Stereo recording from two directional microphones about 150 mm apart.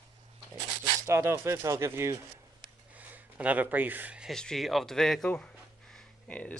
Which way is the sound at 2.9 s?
10° right (ahead or behind).